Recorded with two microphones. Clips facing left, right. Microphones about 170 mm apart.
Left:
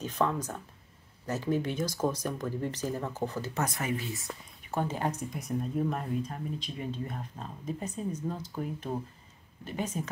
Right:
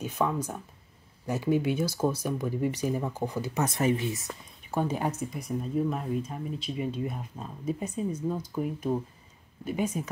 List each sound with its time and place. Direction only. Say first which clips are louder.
0.0 s speech: right 1 dB; 10° right (ahead or behind)
3.6 s speech: right 9 dB; 25° right (ahead or behind)
5.3 s speech: right 2 dB; centre (ahead or behind)
9.7 s speech: right 4 dB; 10° right (ahead or behind)